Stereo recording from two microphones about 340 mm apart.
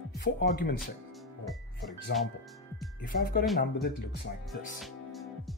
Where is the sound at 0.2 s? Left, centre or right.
Left.